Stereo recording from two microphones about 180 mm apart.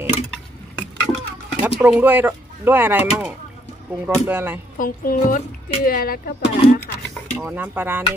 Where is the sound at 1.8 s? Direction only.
10° right (ahead or behind).